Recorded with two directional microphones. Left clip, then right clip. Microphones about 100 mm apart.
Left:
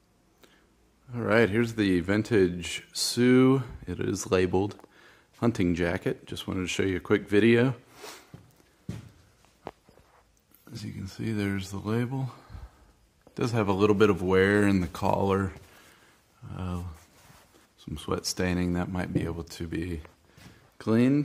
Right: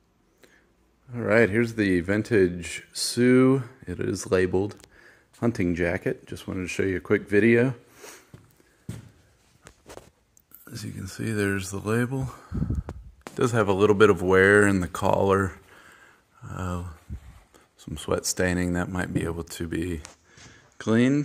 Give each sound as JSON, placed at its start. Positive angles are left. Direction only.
{"t": 1.1, "sound": "a man's voice", "side_deg": -10}
{"t": 7.9, "sound": "a sound", "side_deg": 10}
{"t": 10.7, "sound": "a man's voice", "side_deg": -25}
{"t": 13.9, "sound": "speech", "side_deg": -35}
{"t": 14.6, "sound": "speech", "side_deg": -20}
{"t": 16.4, "sound": "speech", "side_deg": -40}
{"t": 20.7, "sound": "speech", "side_deg": -5}